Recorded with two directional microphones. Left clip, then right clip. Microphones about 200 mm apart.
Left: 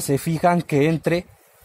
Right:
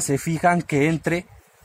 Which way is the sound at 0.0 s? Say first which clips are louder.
Left 1 dB; 30° left (ahead or behind).